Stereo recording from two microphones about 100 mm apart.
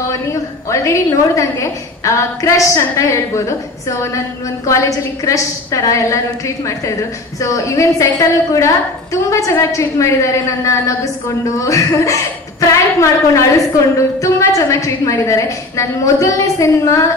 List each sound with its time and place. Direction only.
0.3 s a woman's voice: 30° left (ahead or behind)